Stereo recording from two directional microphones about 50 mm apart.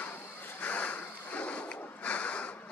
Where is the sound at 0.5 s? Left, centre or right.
Left.